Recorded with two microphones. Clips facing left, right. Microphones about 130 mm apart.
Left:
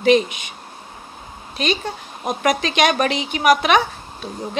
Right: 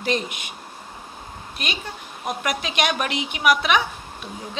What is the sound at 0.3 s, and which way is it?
Speech, 5° right (ahead or behind).